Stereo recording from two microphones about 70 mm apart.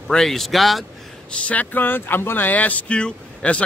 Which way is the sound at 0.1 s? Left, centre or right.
Centre.